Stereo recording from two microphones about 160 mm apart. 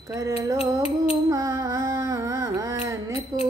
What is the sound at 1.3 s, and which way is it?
Music, 20° right (ahead or behind).